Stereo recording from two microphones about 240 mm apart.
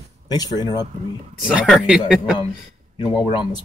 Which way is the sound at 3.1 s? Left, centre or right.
Centre.